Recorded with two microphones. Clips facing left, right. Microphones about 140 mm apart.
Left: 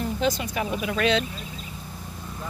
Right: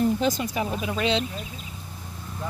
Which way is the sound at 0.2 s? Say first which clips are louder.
Even; 45° right (ahead or behind).